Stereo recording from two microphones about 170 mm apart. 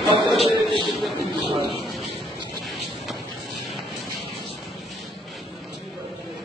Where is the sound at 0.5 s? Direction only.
30° right (ahead or behind).